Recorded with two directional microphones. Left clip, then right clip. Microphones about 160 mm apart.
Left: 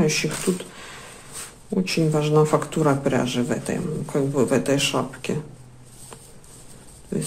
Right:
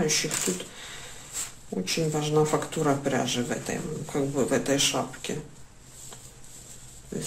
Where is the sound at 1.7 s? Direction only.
30° left (ahead or behind).